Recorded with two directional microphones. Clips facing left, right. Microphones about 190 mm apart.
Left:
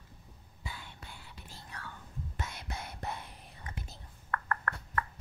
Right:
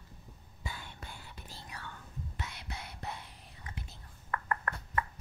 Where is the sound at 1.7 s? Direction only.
10° right (ahead or behind).